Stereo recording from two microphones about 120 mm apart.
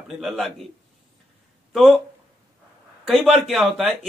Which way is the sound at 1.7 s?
Centre (ahead or behind).